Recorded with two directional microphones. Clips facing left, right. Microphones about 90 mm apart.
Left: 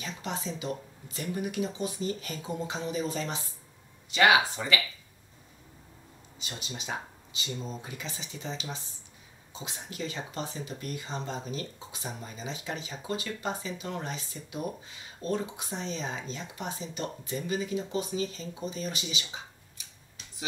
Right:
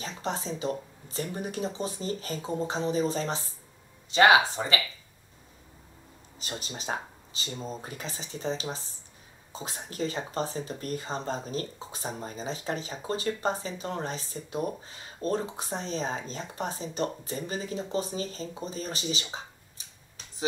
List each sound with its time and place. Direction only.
0.0 s speech: 35° right (ahead or behind)
6.4 s speech: 40° right (ahead or behind)